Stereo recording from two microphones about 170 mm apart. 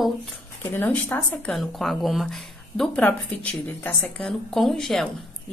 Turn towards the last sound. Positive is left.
turn(degrees=0)  # may be behind; listen again after turning